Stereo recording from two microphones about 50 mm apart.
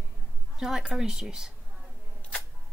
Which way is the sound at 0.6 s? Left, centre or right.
Centre.